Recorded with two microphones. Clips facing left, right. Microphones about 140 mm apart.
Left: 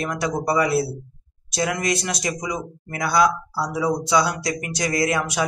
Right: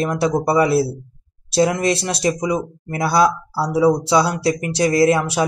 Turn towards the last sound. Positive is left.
turn(degrees=-30)  # may be behind; listen again after turning